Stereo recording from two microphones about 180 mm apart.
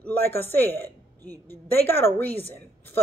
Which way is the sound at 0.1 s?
60° right (ahead or behind).